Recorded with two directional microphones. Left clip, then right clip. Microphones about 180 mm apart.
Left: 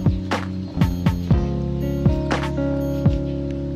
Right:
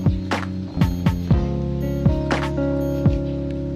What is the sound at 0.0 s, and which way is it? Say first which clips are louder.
Music: even; centre (ahead or behind).